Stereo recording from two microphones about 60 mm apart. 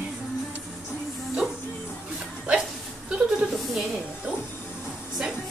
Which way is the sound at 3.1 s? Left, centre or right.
Centre.